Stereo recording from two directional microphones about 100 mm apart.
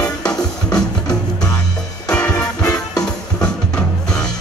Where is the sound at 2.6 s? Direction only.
40° left (ahead or behind).